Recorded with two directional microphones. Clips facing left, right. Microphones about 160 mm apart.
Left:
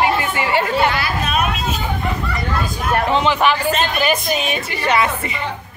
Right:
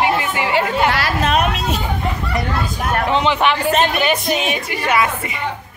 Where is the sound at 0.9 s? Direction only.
80° right.